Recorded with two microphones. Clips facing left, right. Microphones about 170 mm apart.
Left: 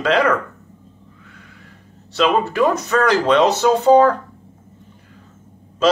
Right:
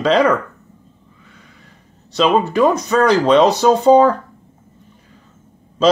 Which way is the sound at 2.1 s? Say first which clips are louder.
Right 2 dB; 15° right (ahead or behind).